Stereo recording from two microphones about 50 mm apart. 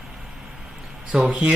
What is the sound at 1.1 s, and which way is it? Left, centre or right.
Speech, centre.